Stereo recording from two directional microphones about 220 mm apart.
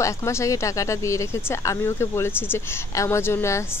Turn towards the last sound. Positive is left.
turn(degrees=10)  # may be behind; listen again after turning